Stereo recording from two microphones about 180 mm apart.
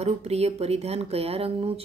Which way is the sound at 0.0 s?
35° right (ahead or behind).